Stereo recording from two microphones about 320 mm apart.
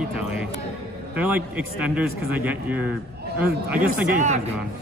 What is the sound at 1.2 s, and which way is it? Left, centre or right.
Speech, centre.